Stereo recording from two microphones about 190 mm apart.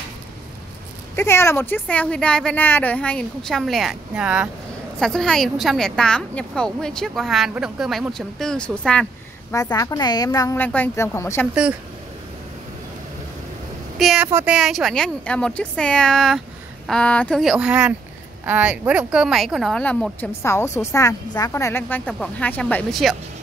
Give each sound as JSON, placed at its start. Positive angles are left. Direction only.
{"t": 1.1, "sound": "a woman's voice", "side_deg": 15}
{"t": 9.5, "sound": "speech", "side_deg": 15}
{"t": 13.9, "sound": "a woman's voice", "side_deg": -5}